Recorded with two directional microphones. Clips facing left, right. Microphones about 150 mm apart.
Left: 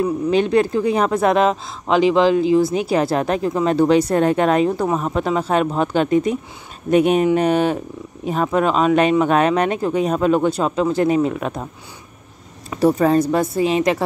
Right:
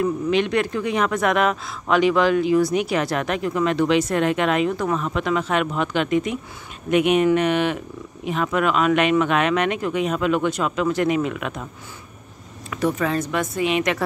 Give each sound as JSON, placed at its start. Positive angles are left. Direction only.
{"t": 0.0, "sound": "speech", "side_deg": 35}